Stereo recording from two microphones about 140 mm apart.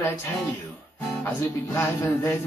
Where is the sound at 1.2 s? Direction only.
15° left (ahead or behind).